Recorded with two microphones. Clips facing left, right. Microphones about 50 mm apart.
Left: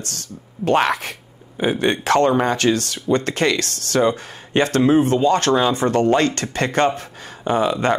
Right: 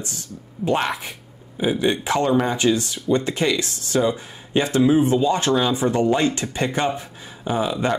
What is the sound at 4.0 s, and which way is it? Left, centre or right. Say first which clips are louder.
Speech: left 3 dB; left.